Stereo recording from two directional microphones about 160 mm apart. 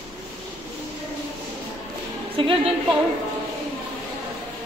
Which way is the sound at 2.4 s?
35° right (ahead or behind).